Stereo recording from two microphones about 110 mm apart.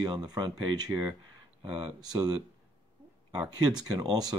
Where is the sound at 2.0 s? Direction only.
40° right (ahead or behind).